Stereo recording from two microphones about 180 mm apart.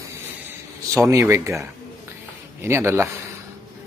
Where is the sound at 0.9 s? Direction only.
15° right (ahead or behind).